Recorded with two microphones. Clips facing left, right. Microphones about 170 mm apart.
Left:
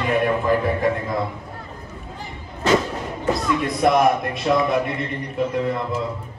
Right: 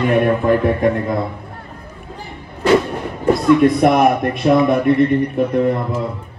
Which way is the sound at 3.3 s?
60° right (ahead or behind).